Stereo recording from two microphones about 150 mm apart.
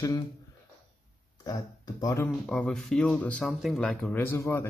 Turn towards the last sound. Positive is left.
turn(degrees=15)  # may be behind; listen again after turning